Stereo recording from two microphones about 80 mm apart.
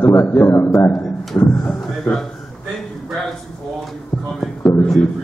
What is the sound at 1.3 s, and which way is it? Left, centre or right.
Speech, centre.